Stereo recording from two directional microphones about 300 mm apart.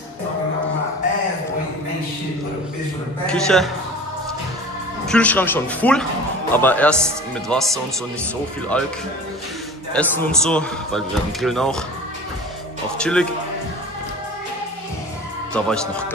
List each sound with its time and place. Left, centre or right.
3.3 s speech: centre
5.0 s speech: centre
8.7 s speech: centre
9.9 s speech: centre
13.0 s speech: centre
15.5 s speech: centre